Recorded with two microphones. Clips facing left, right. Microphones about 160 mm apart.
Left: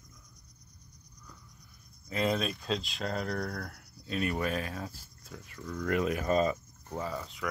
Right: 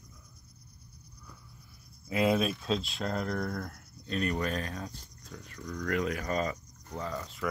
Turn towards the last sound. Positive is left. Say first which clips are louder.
# even
turn(degrees=0)  # may be behind; listen again after turning